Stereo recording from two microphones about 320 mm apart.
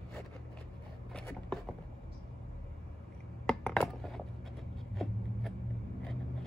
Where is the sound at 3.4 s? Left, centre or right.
Centre.